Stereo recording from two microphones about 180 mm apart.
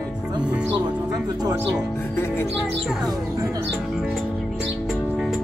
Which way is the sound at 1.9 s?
15° left (ahead or behind).